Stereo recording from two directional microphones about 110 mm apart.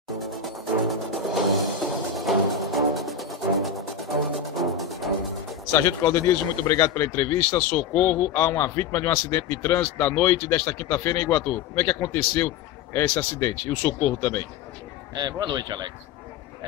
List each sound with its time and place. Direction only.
0.3 s music: centre (ahead or behind)
5.7 s a man's voice: 25° left (ahead or behind)
15.1 s speech: 40° right (ahead or behind)